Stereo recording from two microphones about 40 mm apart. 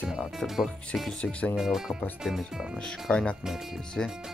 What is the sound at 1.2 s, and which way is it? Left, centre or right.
Speech, left.